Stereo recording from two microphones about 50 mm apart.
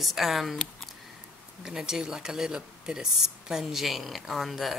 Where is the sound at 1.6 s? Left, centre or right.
Centre.